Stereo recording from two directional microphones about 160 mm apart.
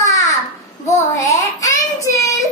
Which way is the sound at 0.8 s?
20° left (ahead or behind).